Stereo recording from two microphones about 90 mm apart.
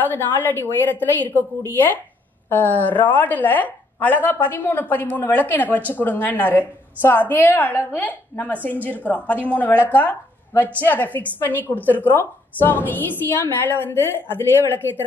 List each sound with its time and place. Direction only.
0.0 s a woman's voice: 20° left (ahead or behind)